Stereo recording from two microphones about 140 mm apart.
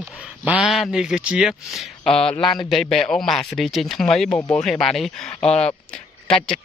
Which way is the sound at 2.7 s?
Centre (ahead or behind).